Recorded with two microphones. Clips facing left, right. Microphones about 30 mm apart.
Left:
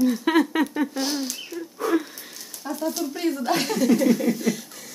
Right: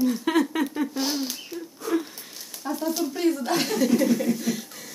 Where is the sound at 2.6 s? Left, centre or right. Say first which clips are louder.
Even; centre.